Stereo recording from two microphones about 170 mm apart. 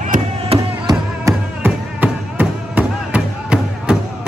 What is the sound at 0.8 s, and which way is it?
Music, 15° right (ahead or behind).